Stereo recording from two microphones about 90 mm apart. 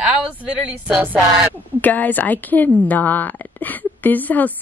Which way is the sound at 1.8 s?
20° left (ahead or behind).